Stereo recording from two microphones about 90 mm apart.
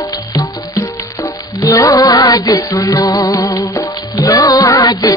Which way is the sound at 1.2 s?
40° left (ahead or behind).